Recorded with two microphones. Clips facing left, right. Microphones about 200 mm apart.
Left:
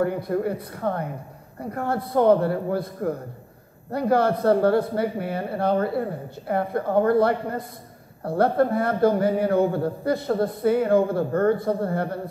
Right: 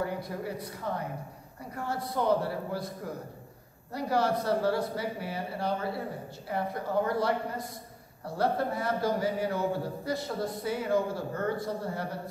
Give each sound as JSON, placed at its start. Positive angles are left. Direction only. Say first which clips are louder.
{"t": 0.0, "sound": "a man's voice", "louder": "left 10 dB", "side_deg": 55}